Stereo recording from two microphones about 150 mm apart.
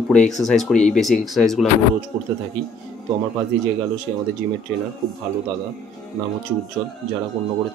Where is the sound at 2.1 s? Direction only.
45° right (ahead or behind).